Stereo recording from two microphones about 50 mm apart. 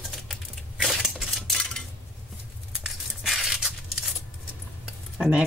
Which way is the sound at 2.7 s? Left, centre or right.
Centre.